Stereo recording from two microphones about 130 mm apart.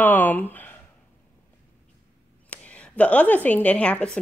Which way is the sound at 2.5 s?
10° left (ahead or behind).